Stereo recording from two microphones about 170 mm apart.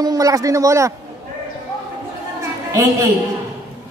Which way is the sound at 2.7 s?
15° right (ahead or behind).